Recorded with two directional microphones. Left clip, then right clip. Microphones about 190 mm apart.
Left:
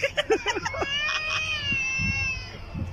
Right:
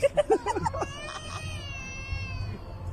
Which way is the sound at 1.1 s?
30° right (ahead or behind).